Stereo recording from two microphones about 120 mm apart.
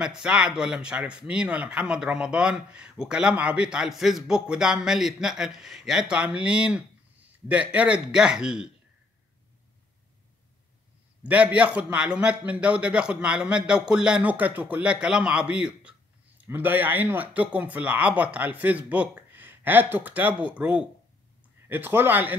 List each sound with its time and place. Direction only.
0.0 s speech: 5° right (ahead or behind)
11.2 s speech: 10° right (ahead or behind)